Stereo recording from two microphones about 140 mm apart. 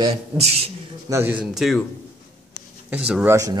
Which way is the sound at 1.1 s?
20° right (ahead or behind).